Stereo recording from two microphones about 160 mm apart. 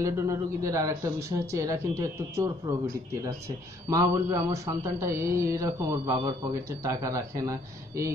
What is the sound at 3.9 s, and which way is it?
Speech, 20° right (ahead or behind).